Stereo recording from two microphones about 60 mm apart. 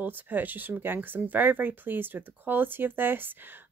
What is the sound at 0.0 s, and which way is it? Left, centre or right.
Speech, right.